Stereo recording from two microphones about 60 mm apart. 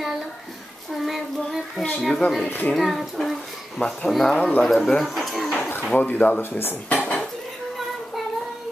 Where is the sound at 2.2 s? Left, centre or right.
Left.